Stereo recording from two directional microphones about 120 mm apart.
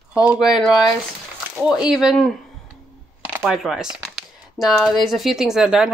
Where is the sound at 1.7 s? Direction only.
5° right (ahead or behind).